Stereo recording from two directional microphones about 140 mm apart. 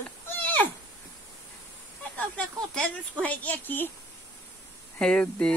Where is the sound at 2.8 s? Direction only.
10° left (ahead or behind).